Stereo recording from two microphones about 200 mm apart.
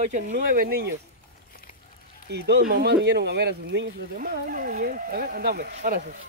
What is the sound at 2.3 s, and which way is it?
Speech, 55° right (ahead or behind).